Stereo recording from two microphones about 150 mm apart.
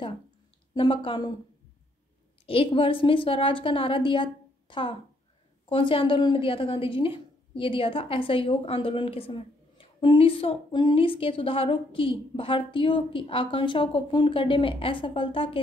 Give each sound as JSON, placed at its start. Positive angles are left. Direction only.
{"t": 0.7, "sound": "a woman's voice", "side_deg": 35}
{"t": 2.4, "sound": "a woman's voice", "side_deg": 35}